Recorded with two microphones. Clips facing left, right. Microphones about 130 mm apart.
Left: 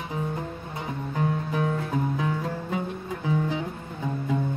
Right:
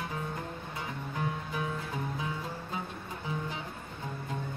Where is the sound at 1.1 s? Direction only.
45° left (ahead or behind).